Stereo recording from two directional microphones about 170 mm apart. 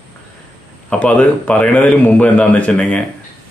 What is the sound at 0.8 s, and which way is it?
Speech, 10° left (ahead or behind).